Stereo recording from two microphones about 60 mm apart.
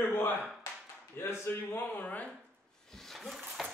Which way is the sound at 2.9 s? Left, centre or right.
Centre.